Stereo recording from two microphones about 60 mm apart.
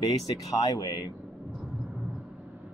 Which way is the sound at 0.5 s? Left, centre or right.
Left.